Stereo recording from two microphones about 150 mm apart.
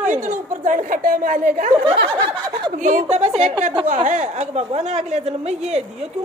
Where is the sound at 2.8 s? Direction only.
50° right (ahead or behind).